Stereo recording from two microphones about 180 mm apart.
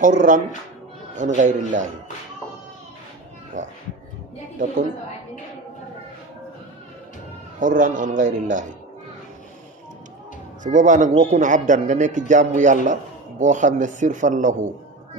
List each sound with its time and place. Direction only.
0.0 s a man's voice: 45° right (ahead or behind)
3.5 s a man's voice: 45° right (ahead or behind)
7.5 s a man's voice: 45° right (ahead or behind)
10.6 s a man's voice: 45° right (ahead or behind)